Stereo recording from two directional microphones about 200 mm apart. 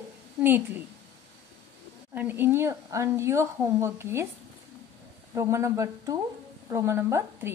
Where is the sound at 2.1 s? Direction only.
10° right (ahead or behind).